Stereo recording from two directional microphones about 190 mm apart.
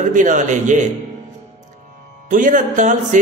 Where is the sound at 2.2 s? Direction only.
45° right (ahead or behind).